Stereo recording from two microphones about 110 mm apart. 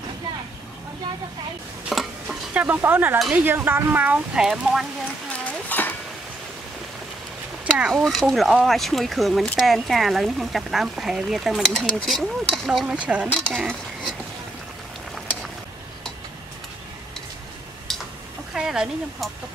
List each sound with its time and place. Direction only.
1.9 s stir: centre (ahead or behind)
2.5 s speech: 15° right (ahead or behind)
4.5 s speech: 5° right (ahead or behind)
5.4 s a sound: 15° left (ahead or behind)
7.7 s speech: centre (ahead or behind)
13.3 s speech: 10° left (ahead or behind)
17.9 s a sound: 5° left (ahead or behind)
18.5 s speech: 5° right (ahead or behind)